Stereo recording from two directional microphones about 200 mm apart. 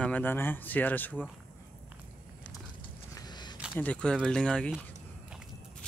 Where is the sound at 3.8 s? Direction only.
5° left (ahead or behind).